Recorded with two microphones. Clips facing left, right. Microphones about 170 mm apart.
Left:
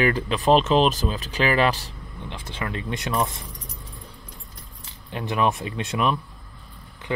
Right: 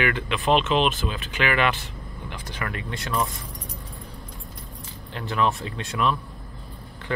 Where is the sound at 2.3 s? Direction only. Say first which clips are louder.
Left 2 dB; 25° left (ahead or behind).